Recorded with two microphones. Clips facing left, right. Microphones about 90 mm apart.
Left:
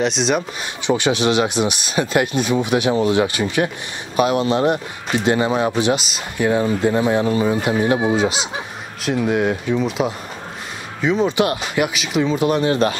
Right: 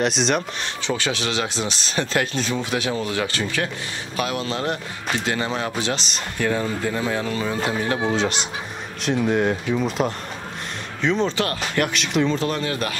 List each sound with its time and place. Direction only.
0.0 s speech: centre (ahead or behind)
0.8 s speech: 20° left (ahead or behind)
12.4 s speech: 20° left (ahead or behind)